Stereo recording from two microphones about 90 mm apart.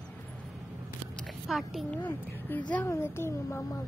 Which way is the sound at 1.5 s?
Centre (ahead or behind).